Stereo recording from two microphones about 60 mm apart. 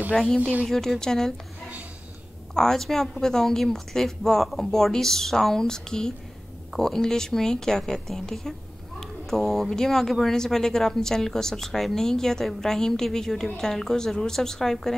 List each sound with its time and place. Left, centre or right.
0.4 s speech: right
0.7 s a woman's voice: centre
2.5 s a woman's voice: centre